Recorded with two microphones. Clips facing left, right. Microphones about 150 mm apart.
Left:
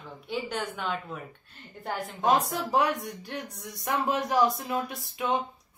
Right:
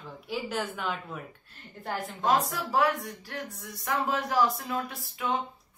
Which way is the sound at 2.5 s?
20° left (ahead or behind).